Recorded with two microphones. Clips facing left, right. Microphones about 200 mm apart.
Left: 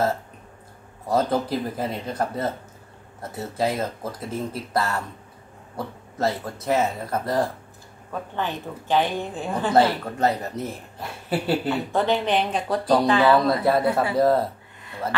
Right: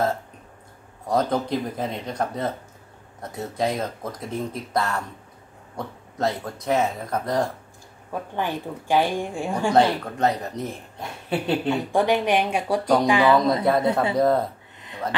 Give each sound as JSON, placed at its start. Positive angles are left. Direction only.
{"t": 1.0, "sound": "speech", "side_deg": 5}
{"t": 8.1, "sound": "speech", "side_deg": -10}
{"t": 9.8, "sound": "speech", "side_deg": 5}
{"t": 11.7, "sound": "speech", "side_deg": -15}
{"t": 14.1, "sound": "speech", "side_deg": 5}
{"t": 14.8, "sound": "a sound", "side_deg": -20}